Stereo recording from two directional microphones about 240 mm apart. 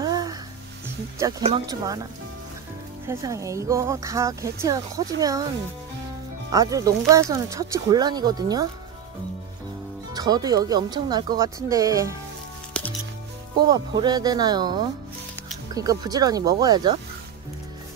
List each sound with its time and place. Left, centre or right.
0.0 s music: centre
1.4 s speech: right
3.1 s speech: centre
6.5 s speech: centre
10.1 s speech: centre
13.6 s speech: centre